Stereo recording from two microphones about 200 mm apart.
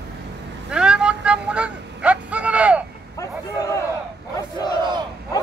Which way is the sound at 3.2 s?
15° left (ahead or behind).